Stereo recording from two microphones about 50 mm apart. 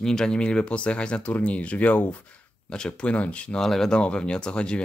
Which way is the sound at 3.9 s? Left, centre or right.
Left.